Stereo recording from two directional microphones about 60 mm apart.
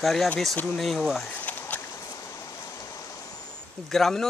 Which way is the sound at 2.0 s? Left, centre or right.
Left.